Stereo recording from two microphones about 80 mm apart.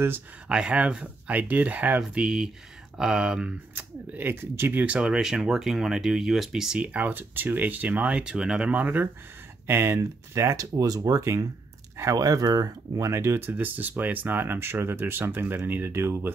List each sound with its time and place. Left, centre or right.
0.5 s speech: centre
3.7 s speech: right; by 6.8 s centre
6.8 s speech: centre; by 10.7 s right
10.8 s speech: right